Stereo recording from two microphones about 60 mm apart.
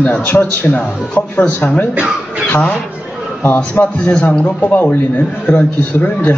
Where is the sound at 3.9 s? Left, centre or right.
Centre.